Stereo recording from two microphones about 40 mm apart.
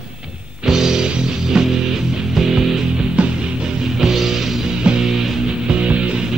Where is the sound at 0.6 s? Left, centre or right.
Centre.